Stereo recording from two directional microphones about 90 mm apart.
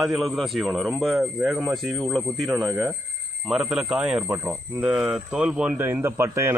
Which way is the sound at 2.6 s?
25° right (ahead or behind).